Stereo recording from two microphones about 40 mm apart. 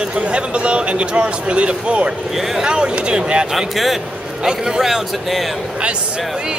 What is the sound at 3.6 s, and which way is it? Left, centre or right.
Speech, centre.